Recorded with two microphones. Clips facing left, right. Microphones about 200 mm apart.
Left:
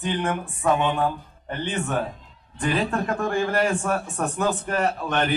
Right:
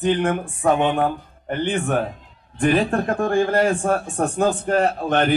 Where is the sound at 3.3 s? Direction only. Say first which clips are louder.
Right 5 dB; 40° right (ahead or behind).